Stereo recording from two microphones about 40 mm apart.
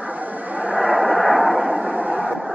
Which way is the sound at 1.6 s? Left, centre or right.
Right.